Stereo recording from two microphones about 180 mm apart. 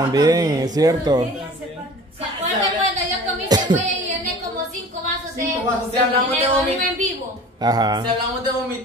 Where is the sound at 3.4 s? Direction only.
20° right (ahead or behind).